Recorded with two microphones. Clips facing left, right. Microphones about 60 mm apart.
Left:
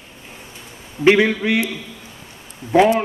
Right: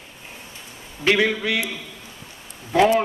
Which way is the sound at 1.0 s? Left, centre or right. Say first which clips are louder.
Left 5 dB; left.